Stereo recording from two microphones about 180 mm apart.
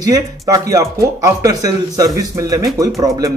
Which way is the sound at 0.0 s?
20° right (ahead or behind).